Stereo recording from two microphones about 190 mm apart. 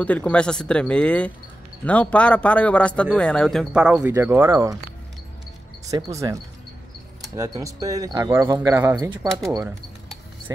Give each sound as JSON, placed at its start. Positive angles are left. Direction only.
{"t": 0.0, "sound": "a man's voice", "side_deg": 5}
{"t": 5.9, "sound": "speech", "side_deg": -20}
{"t": 7.3, "sound": "speech", "side_deg": -15}